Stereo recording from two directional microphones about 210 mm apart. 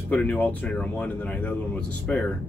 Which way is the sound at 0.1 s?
10° left (ahead or behind).